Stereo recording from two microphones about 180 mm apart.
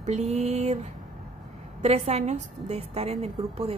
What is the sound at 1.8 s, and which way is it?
Speech, 35° right (ahead or behind).